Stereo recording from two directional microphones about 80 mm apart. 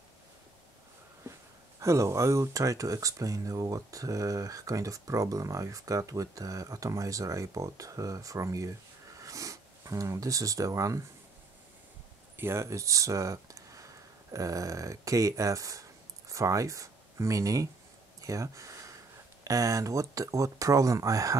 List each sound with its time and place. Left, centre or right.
1.8 s speech: right
12.4 s speech: right
18.2 s a sound: right
19.4 s speech: right